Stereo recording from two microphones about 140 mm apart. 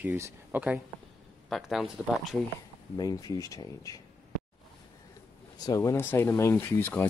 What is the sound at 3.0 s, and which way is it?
Speech, 25° left (ahead or behind).